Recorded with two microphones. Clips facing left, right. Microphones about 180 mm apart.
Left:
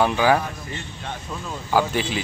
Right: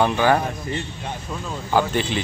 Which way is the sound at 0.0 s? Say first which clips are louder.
Even; 5° left (ahead or behind).